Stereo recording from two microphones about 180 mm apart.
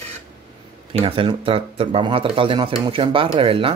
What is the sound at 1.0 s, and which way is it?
Speech, 30° right (ahead or behind).